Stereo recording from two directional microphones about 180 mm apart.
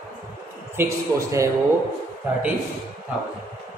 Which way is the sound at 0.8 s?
15° right (ahead or behind).